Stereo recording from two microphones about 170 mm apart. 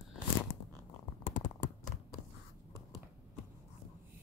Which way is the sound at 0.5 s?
90° left.